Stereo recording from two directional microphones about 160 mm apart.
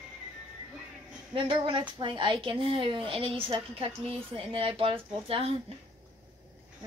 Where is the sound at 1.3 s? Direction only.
30° right (ahead or behind).